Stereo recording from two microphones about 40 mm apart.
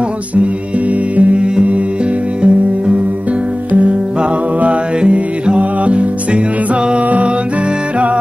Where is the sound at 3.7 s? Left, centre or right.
Right.